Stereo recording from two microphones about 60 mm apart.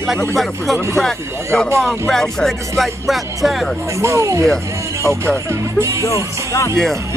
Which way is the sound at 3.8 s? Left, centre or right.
Right.